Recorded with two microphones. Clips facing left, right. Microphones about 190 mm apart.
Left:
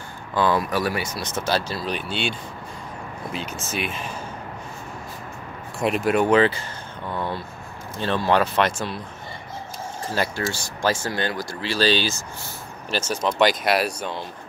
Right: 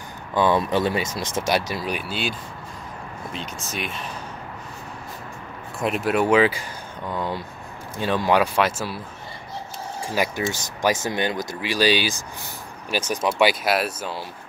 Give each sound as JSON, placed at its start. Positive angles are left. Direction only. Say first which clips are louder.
{"t": 0.3, "sound": "speech", "louder": "right 2 dB", "side_deg": -20}
{"t": 3.7, "sound": "speech", "louder": "left 2 dB", "side_deg": 0}
{"t": 5.8, "sound": "speech", "louder": "left 1 dB", "side_deg": 0}
{"t": 10.0, "sound": "speech", "louder": "right 1 dB", "side_deg": -15}